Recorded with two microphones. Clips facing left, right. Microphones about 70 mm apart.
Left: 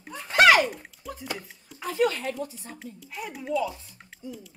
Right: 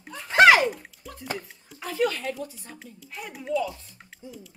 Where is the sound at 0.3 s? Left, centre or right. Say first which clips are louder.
Right 2 dB; right.